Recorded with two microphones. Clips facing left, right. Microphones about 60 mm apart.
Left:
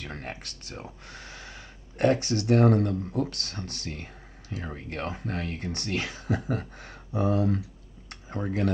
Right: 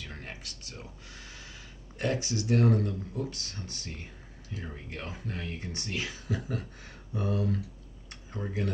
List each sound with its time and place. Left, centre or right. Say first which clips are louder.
0.0 s speech: left 5 dB; left
8.1 s typing: left 6 dB; left